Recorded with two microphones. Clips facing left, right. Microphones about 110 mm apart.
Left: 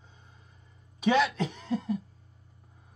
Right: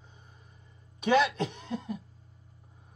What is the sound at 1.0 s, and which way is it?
Speech, centre (ahead or behind).